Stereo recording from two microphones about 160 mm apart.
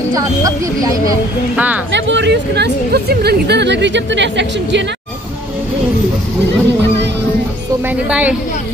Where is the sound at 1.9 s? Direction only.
90° right.